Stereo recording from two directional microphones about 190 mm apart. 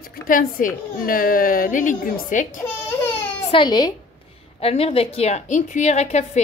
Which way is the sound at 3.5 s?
25° left (ahead or behind).